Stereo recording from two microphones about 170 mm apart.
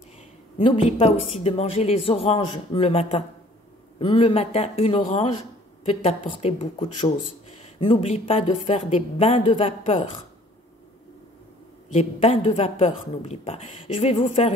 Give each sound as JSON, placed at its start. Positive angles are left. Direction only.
{"t": 1.3, "sound": "a woman's voice", "side_deg": 35}
{"t": 11.9, "sound": "a woman's voice", "side_deg": 40}